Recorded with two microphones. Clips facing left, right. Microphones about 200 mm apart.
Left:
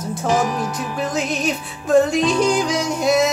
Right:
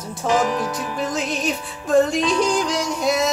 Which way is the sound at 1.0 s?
Centre (ahead or behind).